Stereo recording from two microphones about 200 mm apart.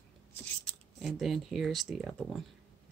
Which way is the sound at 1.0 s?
Centre (ahead or behind).